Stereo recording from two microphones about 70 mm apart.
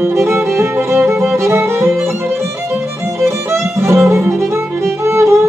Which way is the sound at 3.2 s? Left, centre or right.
Right.